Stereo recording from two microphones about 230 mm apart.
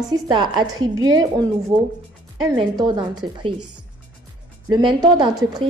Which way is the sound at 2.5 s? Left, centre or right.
Centre.